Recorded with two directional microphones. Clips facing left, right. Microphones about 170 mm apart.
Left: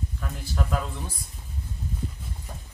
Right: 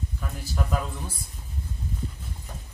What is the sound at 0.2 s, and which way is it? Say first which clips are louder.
Speech: even; 5° right (ahead or behind).